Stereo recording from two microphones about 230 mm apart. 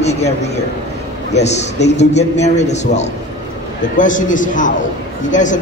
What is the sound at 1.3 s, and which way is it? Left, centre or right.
A man's voice, left.